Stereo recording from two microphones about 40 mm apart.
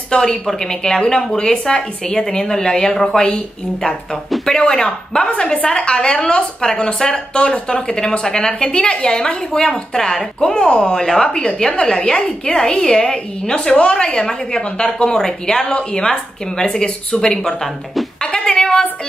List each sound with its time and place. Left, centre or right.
0.1 s a woman's voice: centre
4.5 s a woman's voice: centre
7.1 s a woman's voice: left; by 10.2 s centre
10.4 s a woman's voice: left
16.6 s speech: left
18.2 s a sound: centre